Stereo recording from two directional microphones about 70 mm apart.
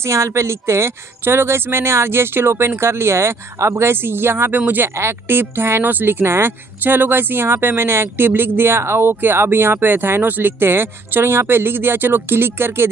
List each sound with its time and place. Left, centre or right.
0.0 s speech: right
4.8 s speech: right